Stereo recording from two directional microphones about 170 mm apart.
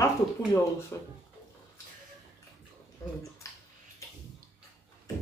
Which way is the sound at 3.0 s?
20° left (ahead or behind).